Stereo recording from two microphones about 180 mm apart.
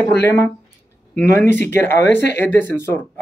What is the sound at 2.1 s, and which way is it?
Speech, 70° left (ahead or behind).